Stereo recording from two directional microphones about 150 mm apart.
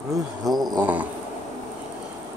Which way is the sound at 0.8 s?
10° right (ahead or behind).